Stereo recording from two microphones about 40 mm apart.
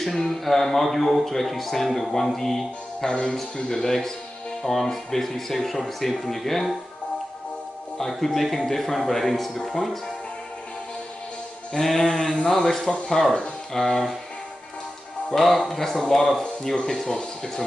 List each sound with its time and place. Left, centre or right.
0.0 s speech: centre
3.1 s speech: left; by 6.8 s centre
8.0 s speech: centre
11.7 s speech: centre
15.3 s speech: centre
17.1 s speech: centre